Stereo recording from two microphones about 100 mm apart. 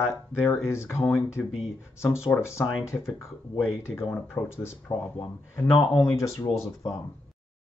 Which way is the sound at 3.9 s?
Centre (ahead or behind).